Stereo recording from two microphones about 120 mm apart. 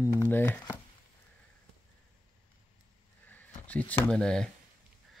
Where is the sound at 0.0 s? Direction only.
20° left (ahead or behind).